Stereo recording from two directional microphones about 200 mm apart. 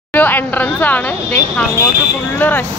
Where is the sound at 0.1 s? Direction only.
10° left (ahead or behind).